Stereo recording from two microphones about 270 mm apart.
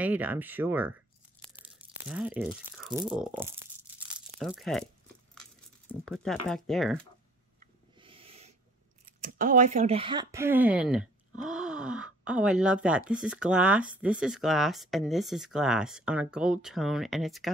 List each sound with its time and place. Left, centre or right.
0.0 s speech: centre
4.1 s crumpling: centre
5.9 s speech: centre
7.9 s owl: centre
9.2 s speech: right; by 17.5 s centre